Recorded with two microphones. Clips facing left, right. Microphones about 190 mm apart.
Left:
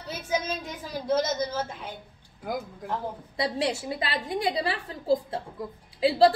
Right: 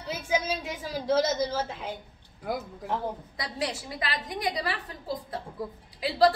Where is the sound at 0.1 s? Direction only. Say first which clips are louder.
Right 1 dB; 10° right (ahead or behind).